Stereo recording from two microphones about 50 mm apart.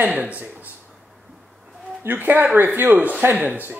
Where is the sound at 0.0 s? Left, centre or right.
Right.